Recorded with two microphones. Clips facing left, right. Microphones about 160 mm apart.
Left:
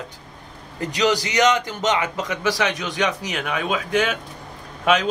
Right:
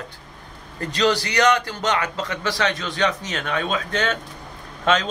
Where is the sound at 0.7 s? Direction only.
15° left (ahead or behind).